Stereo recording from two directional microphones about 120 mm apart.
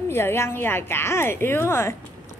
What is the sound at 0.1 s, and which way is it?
A woman's voice, 20° left (ahead or behind).